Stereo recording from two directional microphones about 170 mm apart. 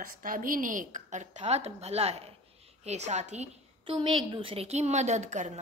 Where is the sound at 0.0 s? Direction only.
55° right (ahead or behind).